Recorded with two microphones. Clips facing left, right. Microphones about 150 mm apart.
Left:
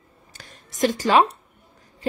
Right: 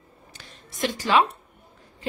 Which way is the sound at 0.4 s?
45° left (ahead or behind).